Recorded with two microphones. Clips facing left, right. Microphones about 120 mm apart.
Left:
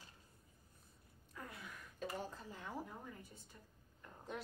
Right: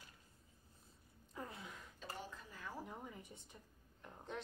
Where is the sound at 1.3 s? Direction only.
25° right (ahead or behind).